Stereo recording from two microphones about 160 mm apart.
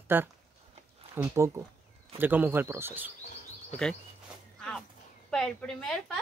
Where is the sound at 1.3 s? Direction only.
20° right (ahead or behind).